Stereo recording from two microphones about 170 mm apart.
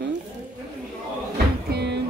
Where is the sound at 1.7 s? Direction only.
80° right.